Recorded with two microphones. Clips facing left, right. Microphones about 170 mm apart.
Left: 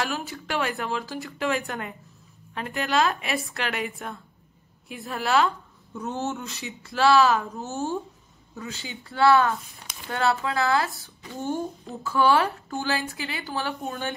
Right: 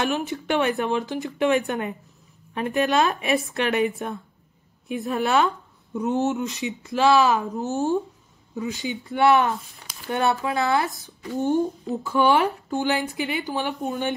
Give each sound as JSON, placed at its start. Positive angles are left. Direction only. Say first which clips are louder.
{"t": 0.0, "sound": "speech", "louder": "right 5 dB", "side_deg": -25}